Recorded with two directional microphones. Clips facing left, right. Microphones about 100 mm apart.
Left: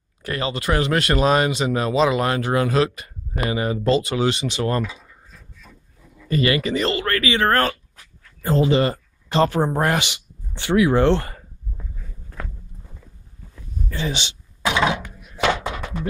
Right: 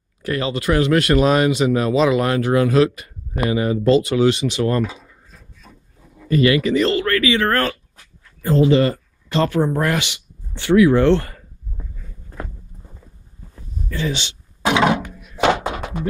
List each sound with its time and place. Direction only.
0.2 s speech: centre (ahead or behind)
5.6 s wood: 40° right (ahead or behind)
6.3 s speech: centre (ahead or behind)
7.3 s speech: 20° left (ahead or behind)
13.8 s speech: 20° left (ahead or behind)
14.7 s thunk: 55° right (ahead or behind); by 15.8 s 35° right (ahead or behind)